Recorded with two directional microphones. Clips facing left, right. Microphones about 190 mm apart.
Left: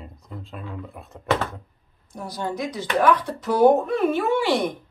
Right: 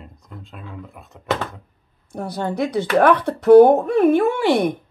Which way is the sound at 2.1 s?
60° right (ahead or behind).